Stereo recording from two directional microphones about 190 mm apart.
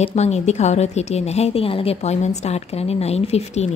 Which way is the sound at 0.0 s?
35° left (ahead or behind).